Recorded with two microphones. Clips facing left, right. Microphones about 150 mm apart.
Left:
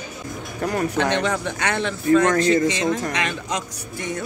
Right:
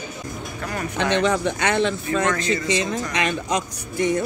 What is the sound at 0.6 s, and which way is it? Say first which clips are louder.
Speech: left 5 dB; 35° left (ahead or behind).